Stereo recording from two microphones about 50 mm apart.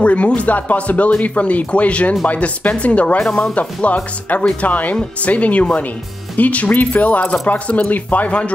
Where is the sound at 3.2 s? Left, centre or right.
Centre.